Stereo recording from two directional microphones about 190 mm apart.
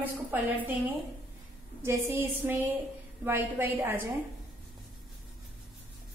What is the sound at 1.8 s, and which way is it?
A woman's voice, 10° right (ahead or behind).